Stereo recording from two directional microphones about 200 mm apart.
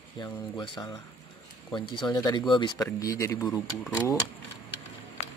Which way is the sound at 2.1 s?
20° left (ahead or behind).